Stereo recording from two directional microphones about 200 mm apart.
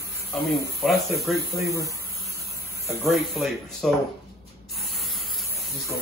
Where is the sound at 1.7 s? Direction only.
15° right (ahead or behind).